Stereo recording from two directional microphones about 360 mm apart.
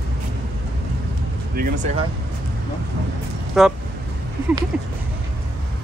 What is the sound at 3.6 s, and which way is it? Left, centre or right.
Speech, centre.